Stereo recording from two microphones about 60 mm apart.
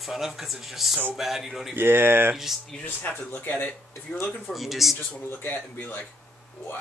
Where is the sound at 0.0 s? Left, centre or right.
Centre.